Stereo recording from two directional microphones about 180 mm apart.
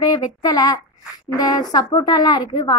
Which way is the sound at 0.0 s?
20° left (ahead or behind).